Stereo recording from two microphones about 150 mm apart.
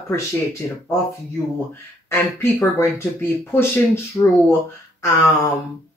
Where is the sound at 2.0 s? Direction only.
15° left (ahead or behind).